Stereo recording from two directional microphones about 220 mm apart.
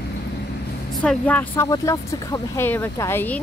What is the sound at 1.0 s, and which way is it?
Speech, 5° left (ahead or behind).